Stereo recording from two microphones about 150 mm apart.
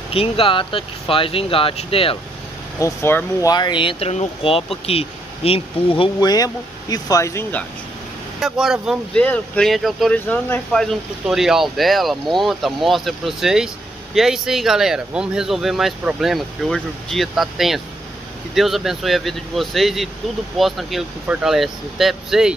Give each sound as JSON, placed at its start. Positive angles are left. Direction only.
{"t": 0.1, "sound": "speech", "side_deg": 40}
{"t": 2.8, "sound": "speech", "side_deg": 15}
{"t": 3.5, "sound": "speech", "side_deg": 30}
{"t": 8.4, "sound": "speech", "side_deg": 0}
{"t": 9.2, "sound": "speech", "side_deg": 5}
{"t": 10.1, "sound": "speech", "side_deg": 10}